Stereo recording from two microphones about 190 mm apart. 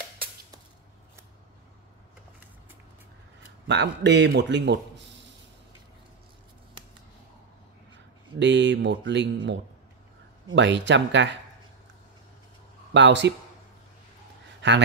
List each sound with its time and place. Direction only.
3.6 s speech: 65° right (ahead or behind)
8.4 s speech: 70° right (ahead or behind)
12.9 s speech: 70° right (ahead or behind)
14.6 s a man's voice: 65° right (ahead or behind)